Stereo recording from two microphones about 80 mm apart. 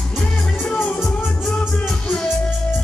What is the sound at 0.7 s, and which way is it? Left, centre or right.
Music, left.